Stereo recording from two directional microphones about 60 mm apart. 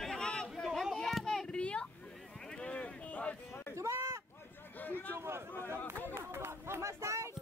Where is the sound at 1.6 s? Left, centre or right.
Centre.